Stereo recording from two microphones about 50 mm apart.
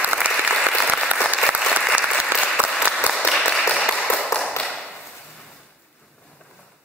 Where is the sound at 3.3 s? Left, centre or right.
Centre.